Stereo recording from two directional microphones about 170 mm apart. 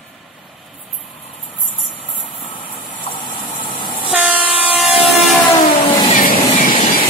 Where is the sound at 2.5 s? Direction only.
30° left (ahead or behind).